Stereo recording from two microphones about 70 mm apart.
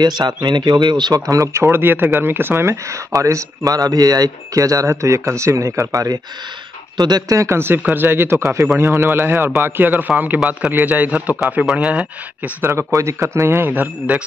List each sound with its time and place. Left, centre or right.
0.4 s speech: right
1.3 s speech: right
1.6 s a man's voice: right
7.0 s speech: right
7.2 s speech: right
7.8 s a man's voice: right
12.6 s a man's voice: right